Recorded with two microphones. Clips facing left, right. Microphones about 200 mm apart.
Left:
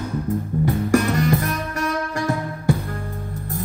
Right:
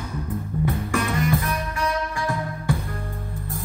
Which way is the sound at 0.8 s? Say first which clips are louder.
Left 7 dB; 45° left (ahead or behind).